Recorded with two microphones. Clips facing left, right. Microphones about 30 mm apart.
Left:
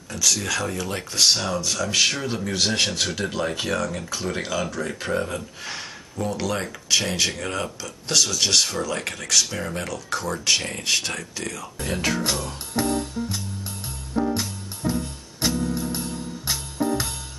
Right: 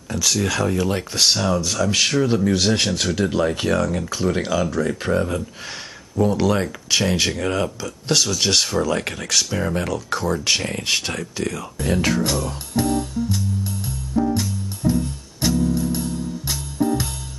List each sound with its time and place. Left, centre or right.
0.1 s speech: centre
12.2 s music: centre